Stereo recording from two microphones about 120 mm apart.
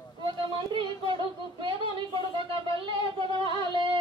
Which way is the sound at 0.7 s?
45° right (ahead or behind).